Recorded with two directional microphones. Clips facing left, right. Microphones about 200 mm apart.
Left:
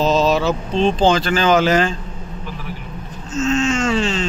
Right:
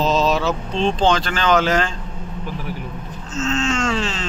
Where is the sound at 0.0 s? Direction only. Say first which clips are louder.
Left 2 dB; centre (ahead or behind).